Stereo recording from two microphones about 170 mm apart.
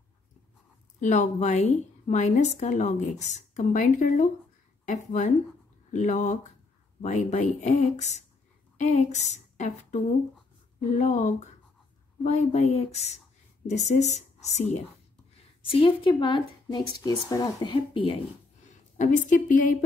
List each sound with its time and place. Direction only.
1.0 s a woman's voice: 45° left (ahead or behind)
8.7 s a sound: 45° left (ahead or behind)
10.8 s a woman's voice: 45° left (ahead or behind); by 18.2 s 30° left (ahead or behind)
18.7 s speech: 45° left (ahead or behind)